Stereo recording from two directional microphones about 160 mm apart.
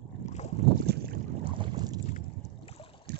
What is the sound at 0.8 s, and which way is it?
Boat, 80° right.